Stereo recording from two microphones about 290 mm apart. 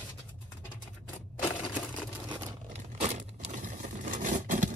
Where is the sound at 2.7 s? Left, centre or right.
Right.